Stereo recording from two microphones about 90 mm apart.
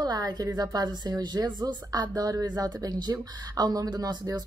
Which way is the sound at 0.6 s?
45° right (ahead or behind).